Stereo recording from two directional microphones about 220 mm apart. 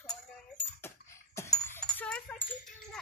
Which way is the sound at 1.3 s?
10° left (ahead or behind).